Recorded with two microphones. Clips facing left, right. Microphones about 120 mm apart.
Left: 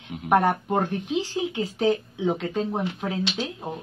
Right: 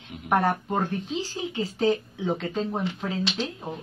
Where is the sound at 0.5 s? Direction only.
15° left (ahead or behind).